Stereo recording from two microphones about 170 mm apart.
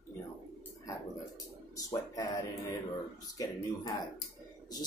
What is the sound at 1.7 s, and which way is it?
Speech, 20° left (ahead or behind).